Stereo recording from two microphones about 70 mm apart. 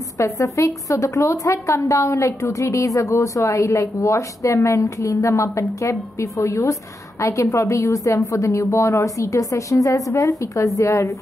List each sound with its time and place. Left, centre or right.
0.2 s a woman's voice: left